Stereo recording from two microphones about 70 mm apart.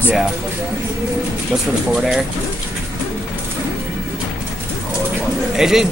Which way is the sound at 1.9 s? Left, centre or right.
Centre.